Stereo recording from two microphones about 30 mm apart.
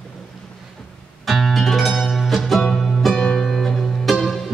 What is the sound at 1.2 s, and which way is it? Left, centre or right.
Music, centre.